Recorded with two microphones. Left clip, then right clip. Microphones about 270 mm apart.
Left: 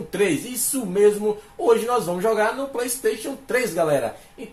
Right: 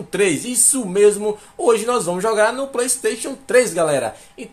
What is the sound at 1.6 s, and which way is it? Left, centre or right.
Speech, right.